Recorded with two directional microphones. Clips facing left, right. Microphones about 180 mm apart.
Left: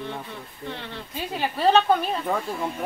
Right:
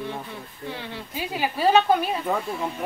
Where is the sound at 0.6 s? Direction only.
5° right (ahead or behind).